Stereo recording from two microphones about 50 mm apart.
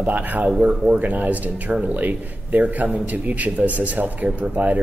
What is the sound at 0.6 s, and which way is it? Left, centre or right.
Speech, right.